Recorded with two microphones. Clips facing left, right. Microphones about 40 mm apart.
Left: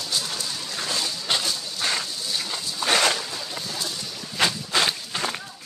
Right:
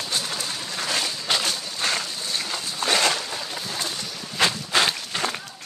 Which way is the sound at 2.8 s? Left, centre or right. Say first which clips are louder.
Left 1 dB; right.